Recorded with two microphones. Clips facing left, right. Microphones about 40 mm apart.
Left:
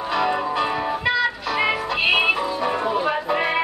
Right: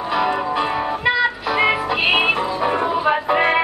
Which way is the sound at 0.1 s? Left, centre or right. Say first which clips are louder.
Right 2 dB; centre.